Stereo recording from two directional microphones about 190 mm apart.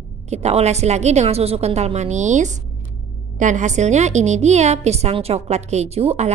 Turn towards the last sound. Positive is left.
turn(degrees=-35)  # may be behind; listen again after turning